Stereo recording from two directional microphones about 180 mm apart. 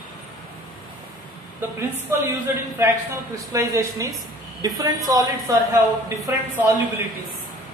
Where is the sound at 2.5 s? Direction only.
10° right (ahead or behind).